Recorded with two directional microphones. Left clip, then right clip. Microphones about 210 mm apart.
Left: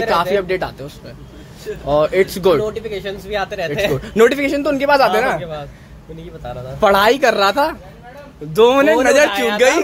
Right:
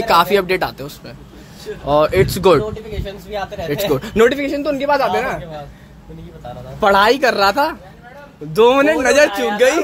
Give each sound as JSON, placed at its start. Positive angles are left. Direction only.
{"t": 0.1, "sound": "speech", "side_deg": -15}
{"t": 3.3, "sound": "speech", "side_deg": 50}
{"t": 3.9, "sound": "speech", "side_deg": -15}
{"t": 4.2, "sound": "a man's voice", "side_deg": 10}
{"t": 6.8, "sound": "speech", "side_deg": 0}